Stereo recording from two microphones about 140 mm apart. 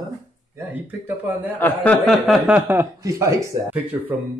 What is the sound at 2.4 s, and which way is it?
Speech, 10° right (ahead or behind).